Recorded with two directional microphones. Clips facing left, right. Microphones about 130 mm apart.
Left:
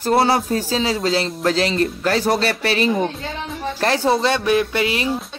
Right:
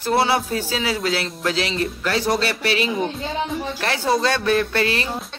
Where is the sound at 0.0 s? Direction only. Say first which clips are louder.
Left 3 dB; 45° left (ahead or behind).